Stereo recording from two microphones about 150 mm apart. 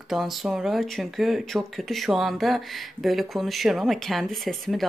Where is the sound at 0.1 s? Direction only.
Centre (ahead or behind).